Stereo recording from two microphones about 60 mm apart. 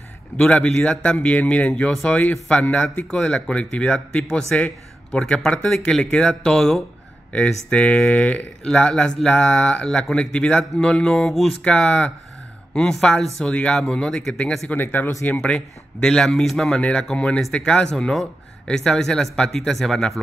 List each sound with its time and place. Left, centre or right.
0.4 s a man's voice: centre
4.6 s a sound: left
5.2 s a man's voice: centre
14.7 s speech: left
15.4 s speech: centre